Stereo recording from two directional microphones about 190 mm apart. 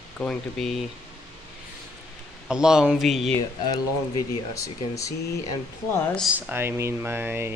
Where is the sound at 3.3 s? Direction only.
20° left (ahead or behind).